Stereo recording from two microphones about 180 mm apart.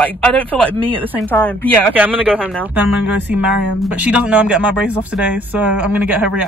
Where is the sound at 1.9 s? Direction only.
10° right (ahead or behind).